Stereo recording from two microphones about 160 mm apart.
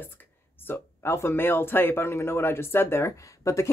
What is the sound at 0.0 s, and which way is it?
Speech, 15° left (ahead or behind).